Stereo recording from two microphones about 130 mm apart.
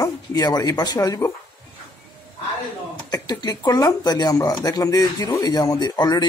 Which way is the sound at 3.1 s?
30° left (ahead or behind).